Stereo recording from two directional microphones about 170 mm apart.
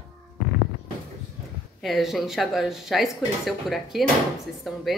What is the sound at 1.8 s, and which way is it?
Speech, centre (ahead or behind).